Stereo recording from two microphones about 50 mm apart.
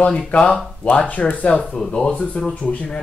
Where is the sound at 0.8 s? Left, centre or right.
Left.